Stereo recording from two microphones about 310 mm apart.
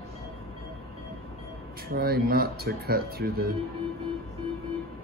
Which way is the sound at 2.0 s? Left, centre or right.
Right.